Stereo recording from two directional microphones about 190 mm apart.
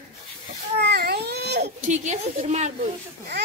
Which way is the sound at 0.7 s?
60° right (ahead or behind).